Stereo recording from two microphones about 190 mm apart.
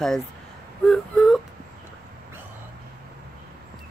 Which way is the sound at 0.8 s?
5° left (ahead or behind).